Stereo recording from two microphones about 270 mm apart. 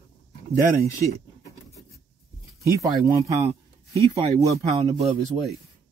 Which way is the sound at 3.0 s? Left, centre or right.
Centre.